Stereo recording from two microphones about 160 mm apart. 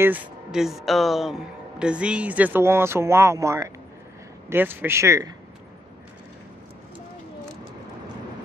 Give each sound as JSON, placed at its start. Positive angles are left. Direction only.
{"t": 0.0, "sound": "speech", "side_deg": -5}